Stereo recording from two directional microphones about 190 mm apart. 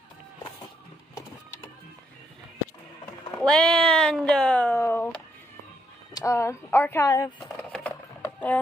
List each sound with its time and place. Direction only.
3.3 s speech: 5° left (ahead or behind)
7.7 s sewing machine: 5° left (ahead or behind)